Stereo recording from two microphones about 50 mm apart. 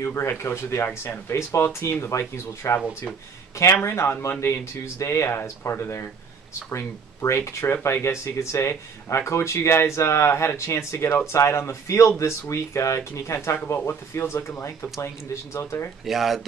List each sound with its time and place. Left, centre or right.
0.0 s speech: left
0.8 s speech: left
1.5 s speech: left
5.7 s speech: left
6.7 s speech: left
7.6 s speech: left
13.7 s speech: left
16.1 s speech: centre